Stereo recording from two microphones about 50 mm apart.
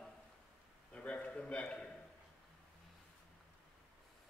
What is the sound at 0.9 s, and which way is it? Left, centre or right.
A man's voice, left.